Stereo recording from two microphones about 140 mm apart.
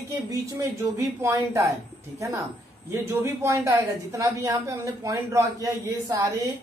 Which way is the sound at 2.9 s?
15° right (ahead or behind).